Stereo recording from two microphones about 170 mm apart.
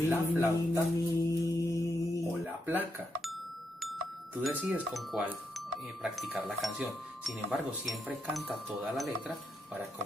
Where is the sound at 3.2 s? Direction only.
Centre (ahead or behind).